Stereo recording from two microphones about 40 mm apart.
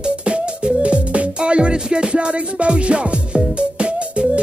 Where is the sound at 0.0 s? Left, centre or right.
Right.